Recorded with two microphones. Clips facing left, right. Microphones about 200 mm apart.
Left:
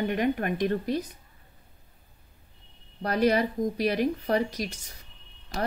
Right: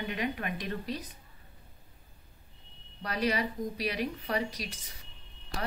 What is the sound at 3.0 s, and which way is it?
Speech, 50° left (ahead or behind).